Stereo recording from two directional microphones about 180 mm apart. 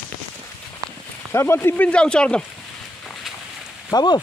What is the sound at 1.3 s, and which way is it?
Speech, 15° left (ahead or behind).